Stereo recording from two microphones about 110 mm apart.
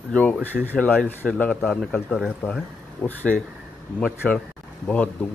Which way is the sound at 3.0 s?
15° left (ahead or behind).